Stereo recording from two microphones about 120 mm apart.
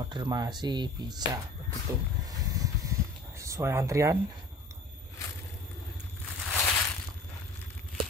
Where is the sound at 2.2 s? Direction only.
30° right (ahead or behind).